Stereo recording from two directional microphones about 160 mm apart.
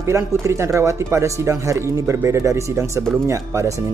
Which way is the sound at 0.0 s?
15° right (ahead or behind).